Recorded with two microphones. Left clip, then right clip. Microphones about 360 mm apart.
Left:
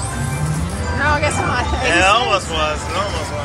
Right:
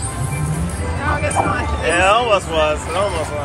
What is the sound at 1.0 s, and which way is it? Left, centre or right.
Music, left.